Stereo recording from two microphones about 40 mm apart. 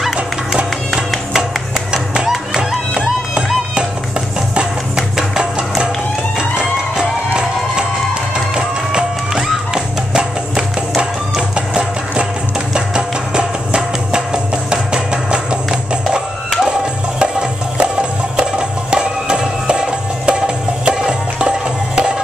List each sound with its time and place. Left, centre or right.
2.2 s music: centre
4.9 s music: centre
17.2 s music: right